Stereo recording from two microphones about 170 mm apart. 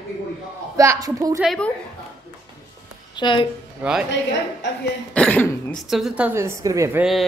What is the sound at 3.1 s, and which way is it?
Speech, 30° left (ahead or behind).